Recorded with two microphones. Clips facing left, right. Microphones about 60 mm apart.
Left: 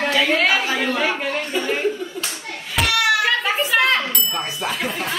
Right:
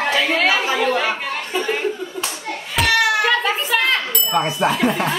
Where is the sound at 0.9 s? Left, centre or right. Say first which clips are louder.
Even; centre.